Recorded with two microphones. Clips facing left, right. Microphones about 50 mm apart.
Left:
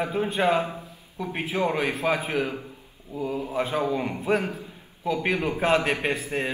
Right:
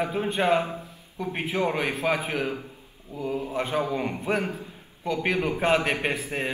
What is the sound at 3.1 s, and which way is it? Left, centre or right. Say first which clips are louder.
Speech: left 3 dB; left.